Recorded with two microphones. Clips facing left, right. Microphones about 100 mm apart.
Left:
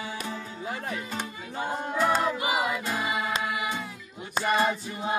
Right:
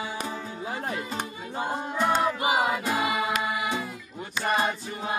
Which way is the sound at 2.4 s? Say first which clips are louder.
Right 3 dB; 45° right (ahead or behind).